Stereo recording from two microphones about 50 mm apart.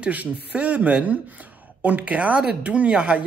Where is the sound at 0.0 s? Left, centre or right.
Right.